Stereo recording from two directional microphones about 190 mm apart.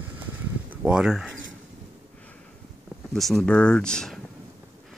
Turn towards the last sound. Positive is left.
turn(degrees=0)  # may be behind; listen again after turning